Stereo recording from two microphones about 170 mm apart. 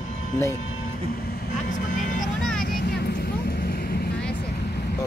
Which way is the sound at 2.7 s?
70° left (ahead or behind).